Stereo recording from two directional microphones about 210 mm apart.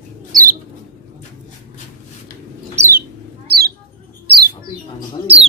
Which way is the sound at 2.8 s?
30° right (ahead or behind).